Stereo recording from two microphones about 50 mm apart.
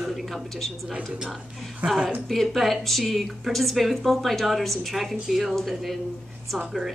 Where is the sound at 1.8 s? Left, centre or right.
Right.